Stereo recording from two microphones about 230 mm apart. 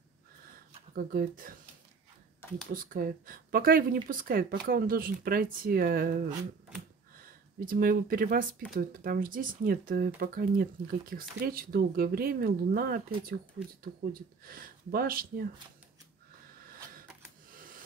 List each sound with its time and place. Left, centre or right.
0.9 s speech: right
2.7 s speech: right
7.6 s speech: right
17.5 s a sound: right